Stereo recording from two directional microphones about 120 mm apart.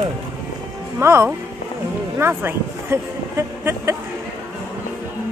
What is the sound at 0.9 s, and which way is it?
Speech, 20° right (ahead or behind).